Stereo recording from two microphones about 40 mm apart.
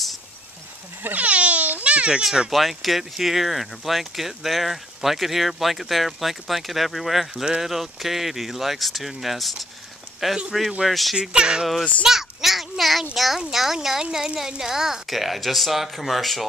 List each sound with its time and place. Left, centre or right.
1.1 s crying: right
2.5 s speech: centre
11.1 s speech: right
12.0 s a sound: centre
13.1 s a woman's voice: centre